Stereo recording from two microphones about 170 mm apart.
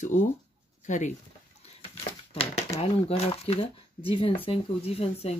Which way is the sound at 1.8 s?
35° left (ahead or behind).